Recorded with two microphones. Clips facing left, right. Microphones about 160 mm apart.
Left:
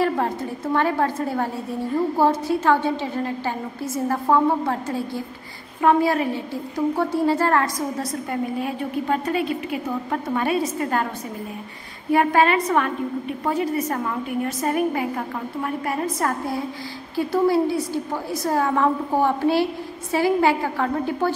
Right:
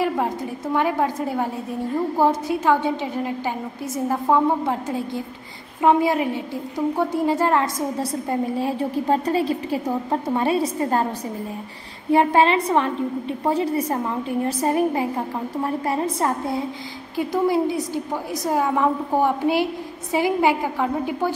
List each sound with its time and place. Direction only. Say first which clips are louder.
0.0 s a woman's voice: left 1 dB; 10° right (ahead or behind)
8.0 s a woman's voice: right 2 dB; 30° right (ahead or behind)
12.1 s a woman's voice: right 1 dB; 25° right (ahead or behind)